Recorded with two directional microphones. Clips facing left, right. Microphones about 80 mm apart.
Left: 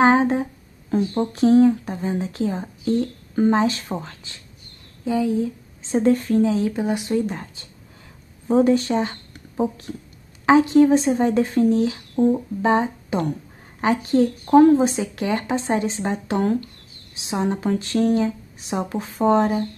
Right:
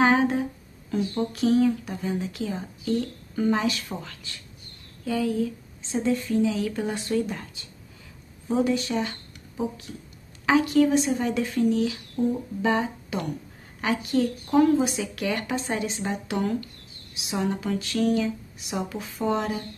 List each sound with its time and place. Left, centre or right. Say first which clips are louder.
0.0 s speech: left 4 dB; left
5.8 s speech: left 7 dB; left
6.7 s speech: left 4 dB; centre
7.2 s speech: left 5 dB; left
10.4 s speech: left 6 dB; left